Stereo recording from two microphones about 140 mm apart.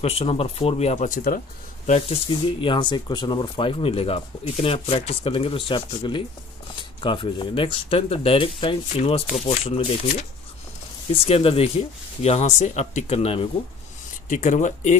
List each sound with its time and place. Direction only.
0.0 s speech: 45° left (ahead or behind)
1.0 s speech: 85° left
2.0 s speech: 40° left (ahead or behind)
9.3 s speech: 60° left (ahead or behind)
11.2 s speech: 45° left (ahead or behind)
14.3 s speech: 65° left (ahead or behind)